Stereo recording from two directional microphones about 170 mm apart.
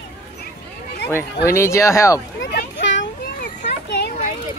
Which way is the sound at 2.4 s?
90° left.